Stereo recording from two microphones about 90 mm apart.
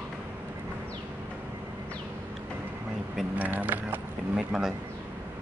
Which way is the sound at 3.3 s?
15° right (ahead or behind).